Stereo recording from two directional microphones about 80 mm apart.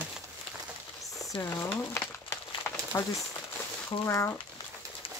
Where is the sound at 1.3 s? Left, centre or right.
Left.